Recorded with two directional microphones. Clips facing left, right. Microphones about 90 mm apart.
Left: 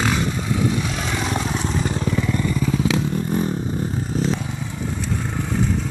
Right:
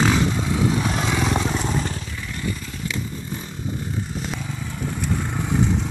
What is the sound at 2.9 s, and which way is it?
Vehicle, 85° left.